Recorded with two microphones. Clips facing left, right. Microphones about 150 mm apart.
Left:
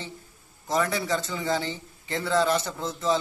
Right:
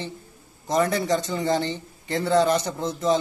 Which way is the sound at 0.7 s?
45° right (ahead or behind).